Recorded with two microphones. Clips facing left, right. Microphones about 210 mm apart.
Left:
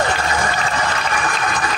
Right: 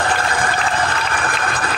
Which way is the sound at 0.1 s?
55° right (ahead or behind).